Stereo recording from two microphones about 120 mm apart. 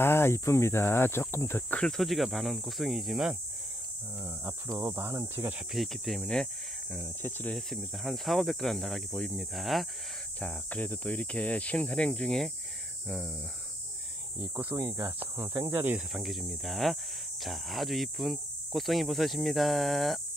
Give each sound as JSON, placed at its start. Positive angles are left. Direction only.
{"t": 0.0, "sound": "speech", "side_deg": 20}
{"t": 1.8, "sound": "speech", "side_deg": 5}
{"t": 4.2, "sound": "speech", "side_deg": -15}
{"t": 5.7, "sound": "speech", "side_deg": 0}
{"t": 7.0, "sound": "speech", "side_deg": 20}
{"t": 7.5, "sound": "speech", "side_deg": 0}
{"t": 10.4, "sound": "speech", "side_deg": 10}
{"t": 14.4, "sound": "speech", "side_deg": -15}
{"t": 16.1, "sound": "speech", "side_deg": 0}